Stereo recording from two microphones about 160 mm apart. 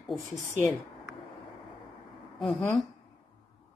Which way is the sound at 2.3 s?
Centre (ahead or behind).